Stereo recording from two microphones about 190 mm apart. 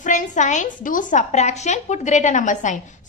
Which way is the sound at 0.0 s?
40° left (ahead or behind).